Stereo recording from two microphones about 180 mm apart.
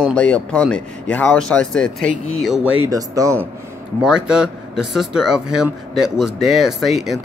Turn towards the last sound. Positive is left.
turn(degrees=0)  # may be behind; listen again after turning